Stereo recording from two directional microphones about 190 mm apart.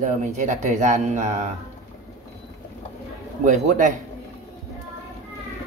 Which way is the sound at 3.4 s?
40° right (ahead or behind).